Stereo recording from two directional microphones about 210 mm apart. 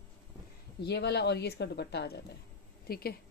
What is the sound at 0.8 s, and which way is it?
Speech, 50° left (ahead or behind).